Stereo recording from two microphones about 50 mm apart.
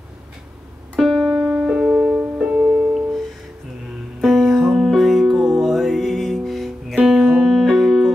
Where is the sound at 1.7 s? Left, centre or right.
Centre.